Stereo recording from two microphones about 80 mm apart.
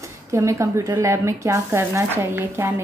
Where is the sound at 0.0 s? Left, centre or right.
Right.